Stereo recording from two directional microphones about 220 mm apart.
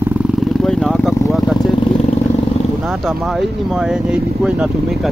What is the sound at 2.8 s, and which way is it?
Speech, 5° right (ahead or behind).